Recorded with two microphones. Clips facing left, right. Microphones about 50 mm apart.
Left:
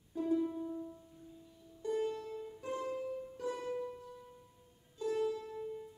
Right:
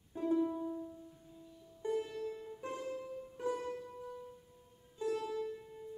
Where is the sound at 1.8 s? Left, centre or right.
Right.